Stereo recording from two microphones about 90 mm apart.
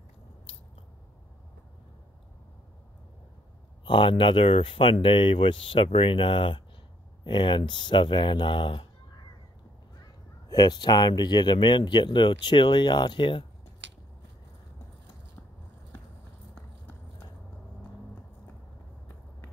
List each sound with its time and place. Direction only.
3.8 s speech: 65° left (ahead or behind)
10.5 s speech: 50° left (ahead or behind)